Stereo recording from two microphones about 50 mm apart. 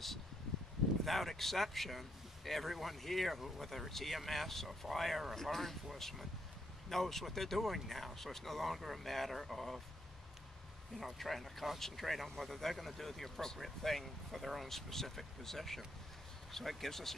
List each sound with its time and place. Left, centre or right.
1.0 s speech: centre
11.0 s speech: centre